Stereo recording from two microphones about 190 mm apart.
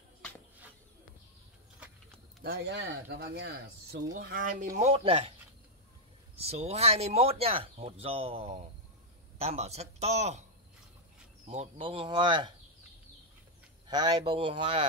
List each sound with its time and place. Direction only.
2.4 s speech: 60° right (ahead or behind)
4.7 s speech: 35° right (ahead or behind)
6.4 s a man's voice: 35° right (ahead or behind)
11.4 s speech: 35° right (ahead or behind)
13.8 s speech: 25° right (ahead or behind)